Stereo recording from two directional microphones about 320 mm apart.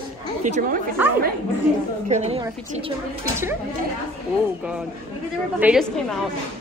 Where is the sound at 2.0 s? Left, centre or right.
Right.